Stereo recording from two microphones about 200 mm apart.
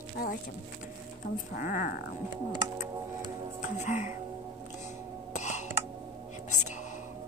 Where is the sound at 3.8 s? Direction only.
35° left (ahead or behind).